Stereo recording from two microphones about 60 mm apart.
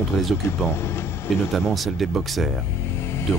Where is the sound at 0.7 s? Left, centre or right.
Left.